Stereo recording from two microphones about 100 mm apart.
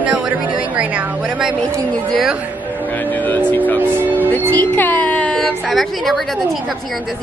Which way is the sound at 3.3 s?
15° left (ahead or behind).